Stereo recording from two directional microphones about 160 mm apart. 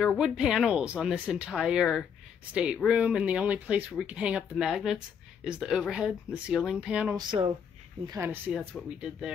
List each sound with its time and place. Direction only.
0.0 s speech: centre (ahead or behind)
7.2 s speech: 30° right (ahead or behind)
8.1 s speech: 15° right (ahead or behind)
8.5 s speech: centre (ahead or behind)